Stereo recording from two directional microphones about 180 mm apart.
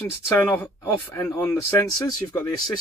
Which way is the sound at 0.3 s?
10° left (ahead or behind).